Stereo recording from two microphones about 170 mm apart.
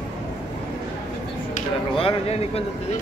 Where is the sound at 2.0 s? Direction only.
35° left (ahead or behind).